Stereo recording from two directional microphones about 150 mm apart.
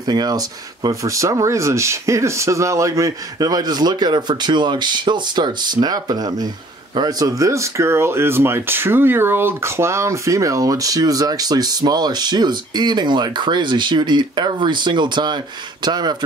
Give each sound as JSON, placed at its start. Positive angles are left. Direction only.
{"t": 0.0, "sound": "speech", "side_deg": -25}